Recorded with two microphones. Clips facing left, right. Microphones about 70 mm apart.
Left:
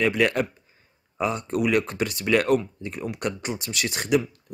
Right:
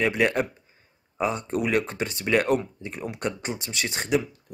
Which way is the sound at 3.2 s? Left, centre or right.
Centre.